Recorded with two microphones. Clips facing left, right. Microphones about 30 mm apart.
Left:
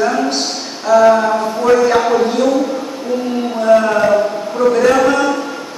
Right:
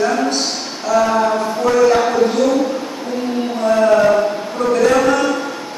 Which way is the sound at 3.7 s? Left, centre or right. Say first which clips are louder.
Even; centre.